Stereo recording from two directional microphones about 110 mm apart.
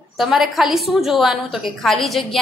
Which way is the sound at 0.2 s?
Centre (ahead or behind).